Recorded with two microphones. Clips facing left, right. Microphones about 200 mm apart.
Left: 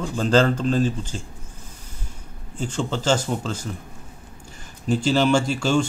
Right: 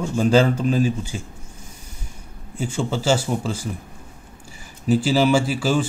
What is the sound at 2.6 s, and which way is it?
Speech, 10° right (ahead or behind).